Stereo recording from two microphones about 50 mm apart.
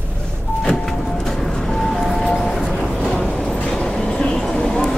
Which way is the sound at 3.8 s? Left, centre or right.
Centre.